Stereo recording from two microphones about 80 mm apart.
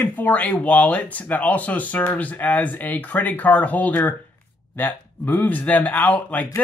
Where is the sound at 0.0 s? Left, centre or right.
Left.